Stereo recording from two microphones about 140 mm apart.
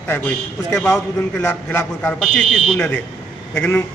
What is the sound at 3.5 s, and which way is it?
Speech, 10° left (ahead or behind).